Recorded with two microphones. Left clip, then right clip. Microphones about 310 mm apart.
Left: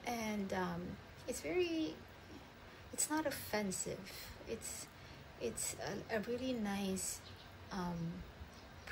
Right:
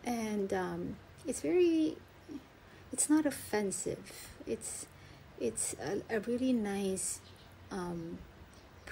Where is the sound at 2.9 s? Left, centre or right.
Centre.